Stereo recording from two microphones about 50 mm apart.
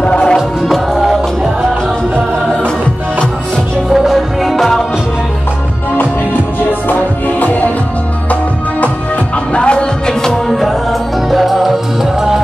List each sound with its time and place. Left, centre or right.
0.0 s music: left
3.9 s music: centre
6.9 s music: left
9.5 s music: left
10.3 s music: centre